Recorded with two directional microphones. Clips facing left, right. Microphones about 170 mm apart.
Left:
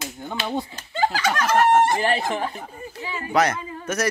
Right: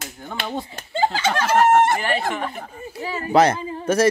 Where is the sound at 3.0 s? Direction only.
40° right (ahead or behind).